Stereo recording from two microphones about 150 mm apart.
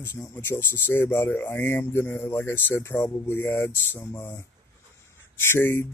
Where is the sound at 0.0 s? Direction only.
15° left (ahead or behind).